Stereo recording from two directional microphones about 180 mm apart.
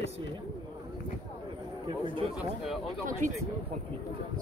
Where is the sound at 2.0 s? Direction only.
30° right (ahead or behind).